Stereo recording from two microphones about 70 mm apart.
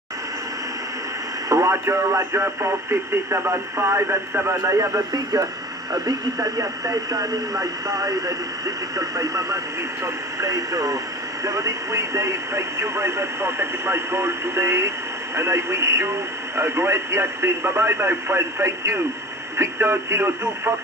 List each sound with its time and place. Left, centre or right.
1.5 s speech: right
5.1 s speech: right